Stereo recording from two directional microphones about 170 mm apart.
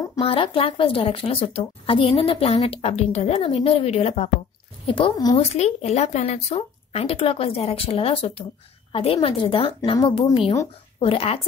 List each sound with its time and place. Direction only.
0.2 s a woman's voice: 30° left (ahead or behind)
5.4 s a woman's voice: 40° left (ahead or behind)